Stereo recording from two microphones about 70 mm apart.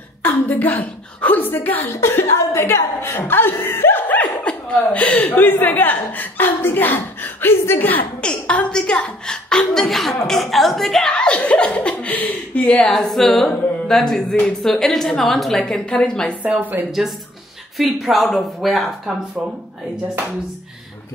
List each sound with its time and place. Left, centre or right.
0.2 s speech: left
2.0 s a woman's voice: left
8.2 s speech: centre
12.7 s speech: centre
16.4 s speech: right
17.7 s speech: centre